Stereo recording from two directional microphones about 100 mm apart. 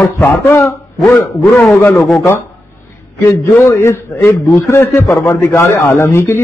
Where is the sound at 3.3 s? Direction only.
30° left (ahead or behind).